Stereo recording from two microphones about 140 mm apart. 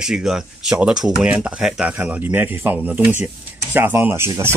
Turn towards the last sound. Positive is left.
turn(degrees=-20)  # may be behind; listen again after turning